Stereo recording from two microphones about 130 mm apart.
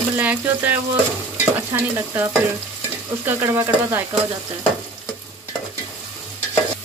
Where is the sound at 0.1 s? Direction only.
15° right (ahead or behind).